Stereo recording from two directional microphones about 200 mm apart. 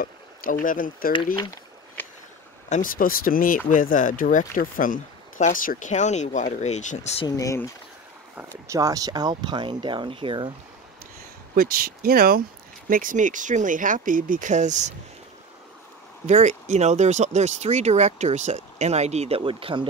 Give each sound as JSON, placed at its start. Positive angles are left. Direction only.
{"t": 0.0, "sound": "speech", "side_deg": 45}
{"t": 1.1, "sound": "speech", "side_deg": 20}
{"t": 2.0, "sound": "a sound", "side_deg": 10}
{"t": 2.7, "sound": "speech", "side_deg": 45}
{"t": 7.2, "sound": "speech", "side_deg": 15}
{"t": 8.6, "sound": "speech", "side_deg": -15}
{"t": 11.5, "sound": "speech", "side_deg": -45}
{"t": 16.3, "sound": "speech", "side_deg": -35}